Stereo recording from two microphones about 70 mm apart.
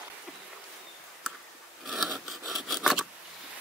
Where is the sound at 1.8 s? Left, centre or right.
Centre.